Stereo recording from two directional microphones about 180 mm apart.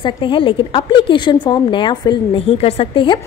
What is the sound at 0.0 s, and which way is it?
A woman's voice, 25° left (ahead or behind).